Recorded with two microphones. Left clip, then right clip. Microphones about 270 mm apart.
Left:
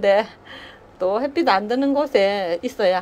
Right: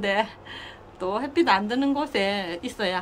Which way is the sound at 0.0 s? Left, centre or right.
Centre.